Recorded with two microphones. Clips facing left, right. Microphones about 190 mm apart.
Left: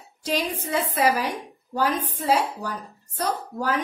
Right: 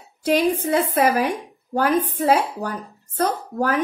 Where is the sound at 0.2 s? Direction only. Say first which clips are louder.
Right 8 dB; 55° right (ahead or behind).